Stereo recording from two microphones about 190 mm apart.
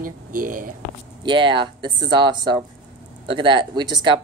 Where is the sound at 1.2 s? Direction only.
25° right (ahead or behind).